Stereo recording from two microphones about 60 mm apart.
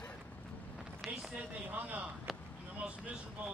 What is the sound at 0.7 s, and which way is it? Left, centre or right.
Vehicle, centre.